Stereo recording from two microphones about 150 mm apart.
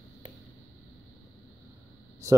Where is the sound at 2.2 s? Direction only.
20° right (ahead or behind).